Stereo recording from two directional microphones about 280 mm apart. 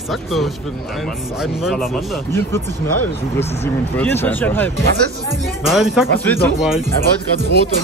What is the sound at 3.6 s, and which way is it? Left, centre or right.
Speech, centre.